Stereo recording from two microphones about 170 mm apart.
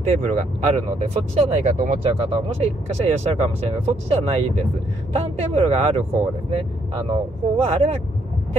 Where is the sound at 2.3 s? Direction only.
35° right (ahead or behind).